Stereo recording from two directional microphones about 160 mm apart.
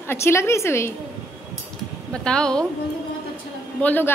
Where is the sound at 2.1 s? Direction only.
5° left (ahead or behind).